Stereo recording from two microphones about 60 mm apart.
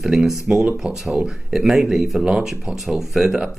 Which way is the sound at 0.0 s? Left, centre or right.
Centre.